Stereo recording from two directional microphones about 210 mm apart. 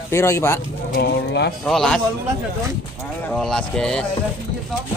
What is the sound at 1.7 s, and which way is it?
Speech, centre (ahead or behind).